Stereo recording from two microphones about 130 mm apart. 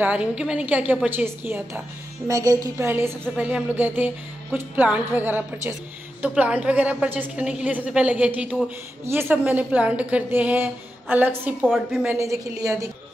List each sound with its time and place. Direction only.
0.0 s a woman's voice: 10° right (ahead or behind); by 2.9 s 25° right (ahead or behind)
2.9 s a woman's voice: 15° right (ahead or behind)
11.6 s a woman's voice: centre (ahead or behind)
12.1 s a woman's voice: 25° right (ahead or behind)